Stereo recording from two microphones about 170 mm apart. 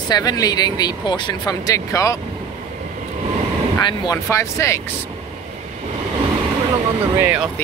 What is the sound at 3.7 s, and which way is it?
Speech, 25° left (ahead or behind).